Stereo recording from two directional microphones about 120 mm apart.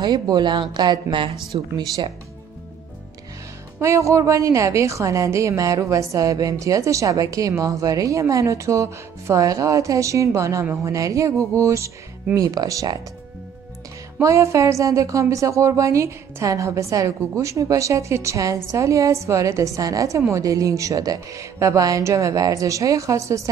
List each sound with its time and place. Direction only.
0.0 s speech: 35° right (ahead or behind)
3.8 s a woman's voice: 25° right (ahead or behind)
14.2 s a woman's voice: 25° right (ahead or behind)